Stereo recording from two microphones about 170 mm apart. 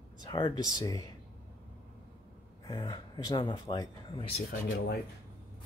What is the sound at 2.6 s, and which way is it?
Speech, 25° left (ahead or behind).